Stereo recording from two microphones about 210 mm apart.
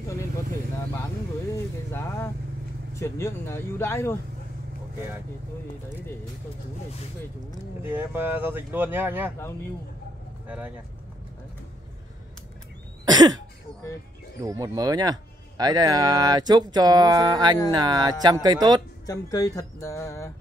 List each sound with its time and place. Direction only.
1.9 s speech: 10° left (ahead or behind)
7.8 s speech: 10° right (ahead or behind)
13.0 s cough: 20° right (ahead or behind)
14.4 s speech: 15° right (ahead or behind)
19.0 s speech: 15° left (ahead or behind)